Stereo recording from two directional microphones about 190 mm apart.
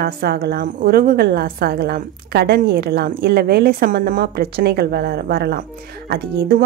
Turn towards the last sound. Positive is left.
turn(degrees=-55)  # may be behind; listen again after turning